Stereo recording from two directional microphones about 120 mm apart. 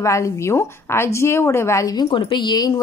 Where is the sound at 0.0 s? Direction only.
25° left (ahead or behind).